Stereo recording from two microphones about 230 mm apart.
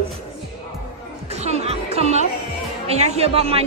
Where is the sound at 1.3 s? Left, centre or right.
Right.